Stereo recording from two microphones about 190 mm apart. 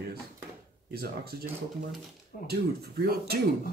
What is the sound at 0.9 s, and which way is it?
Speech, 55° right (ahead or behind).